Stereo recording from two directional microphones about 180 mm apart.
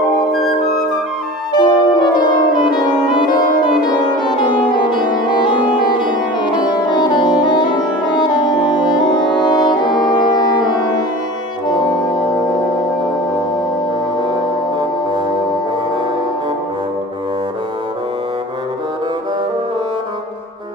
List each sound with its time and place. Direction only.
1.5 s brass instrument: 25° left (ahead or behind)
4.2 s music: 25° left (ahead or behind)
11.8 s brass instrument: 25° left (ahead or behind)